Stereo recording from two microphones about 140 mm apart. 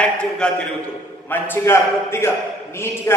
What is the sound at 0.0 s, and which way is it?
A man's voice, 5° left (ahead or behind).